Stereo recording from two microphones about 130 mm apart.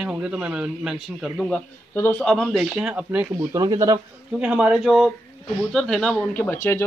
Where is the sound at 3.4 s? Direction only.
30° right (ahead or behind).